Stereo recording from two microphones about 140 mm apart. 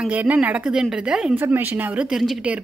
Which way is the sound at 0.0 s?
10° right (ahead or behind).